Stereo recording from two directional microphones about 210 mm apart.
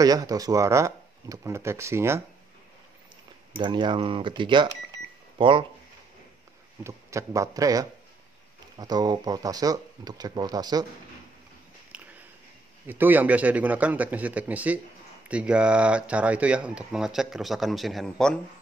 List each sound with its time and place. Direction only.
0.0 s speech: 15° right (ahead or behind)
3.5 s speech: 20° right (ahead or behind)
6.8 s speech: 15° right (ahead or behind)
11.9 s a sound: 5° right (ahead or behind)
12.8 s speech: 10° right (ahead or behind)